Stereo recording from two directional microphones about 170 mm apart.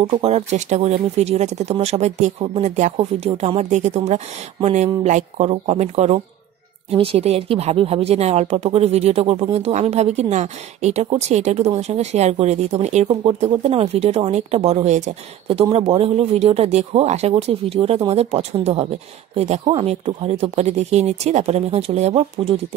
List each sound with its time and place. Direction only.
0.0 s speech: 35° right (ahead or behind)